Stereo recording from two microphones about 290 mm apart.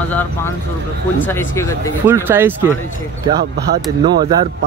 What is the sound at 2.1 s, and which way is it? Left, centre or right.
Speech, centre.